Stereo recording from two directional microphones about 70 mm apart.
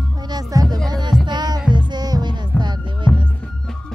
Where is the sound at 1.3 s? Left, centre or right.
Right.